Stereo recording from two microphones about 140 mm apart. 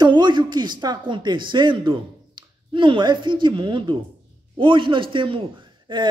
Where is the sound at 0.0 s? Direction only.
35° right (ahead or behind).